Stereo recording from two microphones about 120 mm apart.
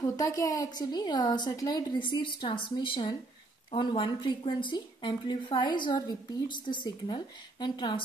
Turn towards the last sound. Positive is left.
turn(degrees=40)  # may be behind; listen again after turning